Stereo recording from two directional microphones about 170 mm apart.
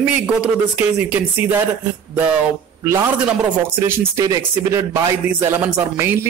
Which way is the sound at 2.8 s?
20° right (ahead or behind).